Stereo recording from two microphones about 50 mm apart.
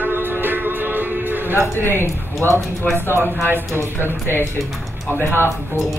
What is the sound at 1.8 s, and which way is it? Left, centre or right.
Speech, left.